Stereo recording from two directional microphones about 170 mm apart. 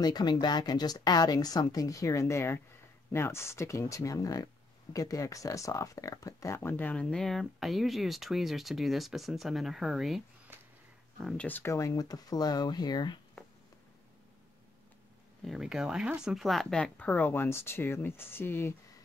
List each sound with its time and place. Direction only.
0.0 s a woman's voice: 25° left (ahead or behind)
15.4 s speech: centre (ahead or behind); by 18.8 s 15° left (ahead or behind)